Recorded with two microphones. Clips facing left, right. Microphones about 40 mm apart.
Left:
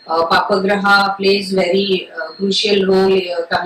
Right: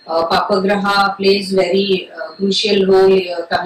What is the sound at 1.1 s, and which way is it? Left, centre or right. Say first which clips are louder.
Speech: right 1 dB; centre.